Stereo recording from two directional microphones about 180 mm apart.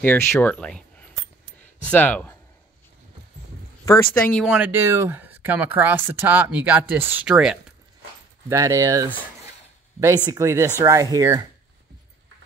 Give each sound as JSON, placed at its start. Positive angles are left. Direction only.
{"t": 0.0, "sound": "speech", "side_deg": 10}
{"t": 3.8, "sound": "speech", "side_deg": 15}
{"t": 4.5, "sound": "speech", "side_deg": -10}
{"t": 8.5, "sound": "speech", "side_deg": -15}